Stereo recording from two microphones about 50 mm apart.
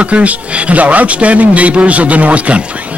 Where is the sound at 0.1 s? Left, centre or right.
Right.